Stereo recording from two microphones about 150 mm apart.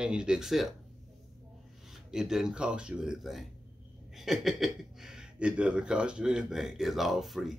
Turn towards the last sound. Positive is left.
turn(degrees=0)  # may be behind; listen again after turning